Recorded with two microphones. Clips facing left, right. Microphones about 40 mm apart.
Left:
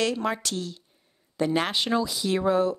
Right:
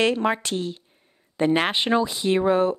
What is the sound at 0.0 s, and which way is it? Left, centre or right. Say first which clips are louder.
A woman's voice: right 5 dB; right.